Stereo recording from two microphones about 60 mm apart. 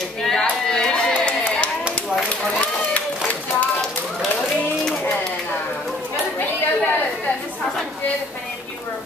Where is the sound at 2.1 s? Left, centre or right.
Centre.